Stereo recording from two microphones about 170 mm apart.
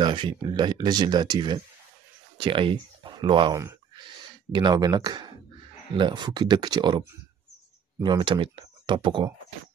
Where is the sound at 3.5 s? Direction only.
25° right (ahead or behind).